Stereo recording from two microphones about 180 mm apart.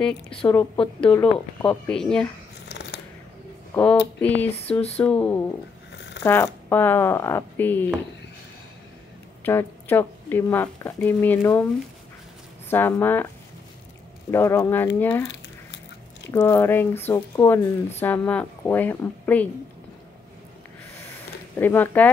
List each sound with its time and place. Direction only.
0.5 s speech: 5° left (ahead or behind)
2.7 s scissors: 70° left (ahead or behind)
4.2 s speech: 10° left (ahead or behind)
9.4 s speech: 10° left (ahead or behind)
12.6 s speech: 10° left (ahead or behind)
14.3 s speech: 15° left (ahead or behind)
16.3 s speech: 15° left (ahead or behind)
21.5 s speech: 10° left (ahead or behind)